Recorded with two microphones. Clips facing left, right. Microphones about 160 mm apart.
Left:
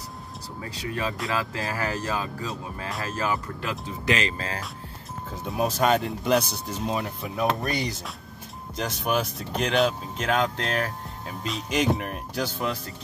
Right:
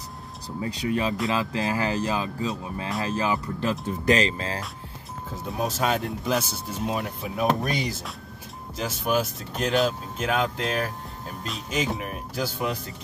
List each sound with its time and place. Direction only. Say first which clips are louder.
0.6 s speech: right 5 dB; 25° right (ahead or behind)
4.1 s speech: right 4 dB; 30° right (ahead or behind)
5.3 s speech: left 2 dB; centre (ahead or behind)